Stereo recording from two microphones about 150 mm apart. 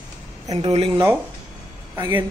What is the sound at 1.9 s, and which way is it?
Speech, 20° right (ahead or behind).